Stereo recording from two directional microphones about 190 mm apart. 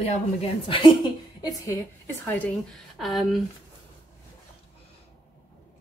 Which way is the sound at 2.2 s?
10° left (ahead or behind).